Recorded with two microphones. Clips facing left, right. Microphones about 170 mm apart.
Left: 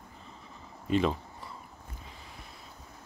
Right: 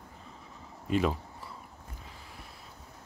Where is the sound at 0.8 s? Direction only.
5° right (ahead or behind).